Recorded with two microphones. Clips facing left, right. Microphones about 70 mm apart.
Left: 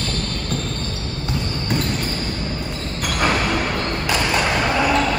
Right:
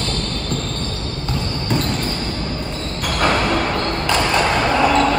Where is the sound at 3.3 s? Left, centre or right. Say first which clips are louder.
Right 4 dB; right.